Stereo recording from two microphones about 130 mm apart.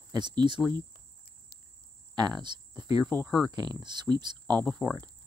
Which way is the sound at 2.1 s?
30° right (ahead or behind).